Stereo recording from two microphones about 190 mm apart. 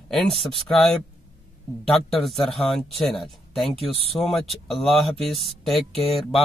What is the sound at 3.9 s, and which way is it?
Speech, 30° left (ahead or behind).